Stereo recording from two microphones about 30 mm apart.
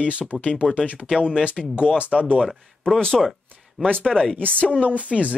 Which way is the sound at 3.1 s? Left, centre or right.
Centre.